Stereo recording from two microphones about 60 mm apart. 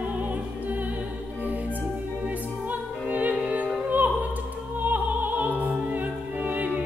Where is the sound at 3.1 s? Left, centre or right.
Right.